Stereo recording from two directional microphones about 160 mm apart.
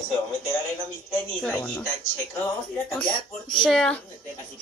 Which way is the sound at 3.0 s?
30° left (ahead or behind).